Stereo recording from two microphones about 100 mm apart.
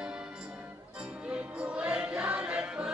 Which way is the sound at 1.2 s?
10° right (ahead or behind).